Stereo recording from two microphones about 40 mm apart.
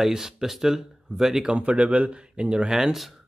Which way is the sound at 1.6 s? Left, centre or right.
Right.